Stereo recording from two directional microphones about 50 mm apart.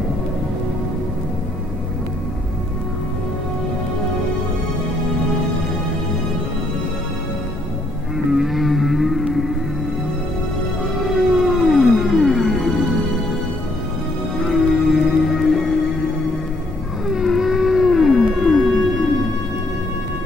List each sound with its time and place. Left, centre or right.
8.3 s music: centre
11.5 s music: centre
14.4 s music: centre
17.1 s whale vocalization: centre
18.6 s music: centre